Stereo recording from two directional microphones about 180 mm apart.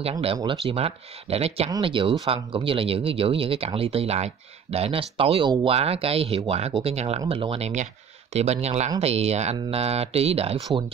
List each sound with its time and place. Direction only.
0.0 s speech: 30° right (ahead or behind)